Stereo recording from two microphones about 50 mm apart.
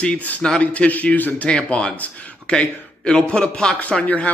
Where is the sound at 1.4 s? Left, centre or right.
Centre.